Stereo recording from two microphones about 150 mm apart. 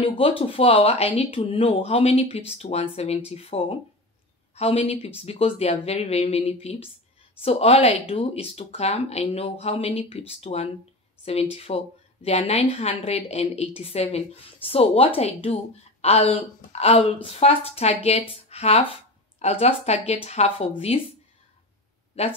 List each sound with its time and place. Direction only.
0.0 s speech: 35° left (ahead or behind)
22.2 s speech: 45° left (ahead or behind)